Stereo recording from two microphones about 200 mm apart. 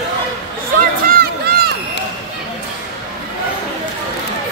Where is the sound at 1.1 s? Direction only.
50° right (ahead or behind).